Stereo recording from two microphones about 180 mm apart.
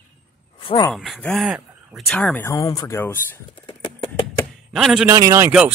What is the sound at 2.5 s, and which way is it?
Speech, 20° left (ahead or behind).